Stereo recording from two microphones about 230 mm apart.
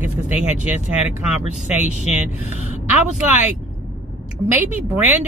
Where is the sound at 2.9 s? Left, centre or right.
Centre.